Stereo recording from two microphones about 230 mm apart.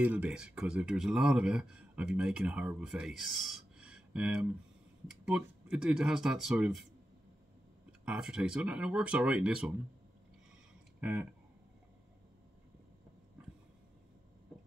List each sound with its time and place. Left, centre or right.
0.0 s speech: centre
8.0 s speech: centre
11.0 s speech: centre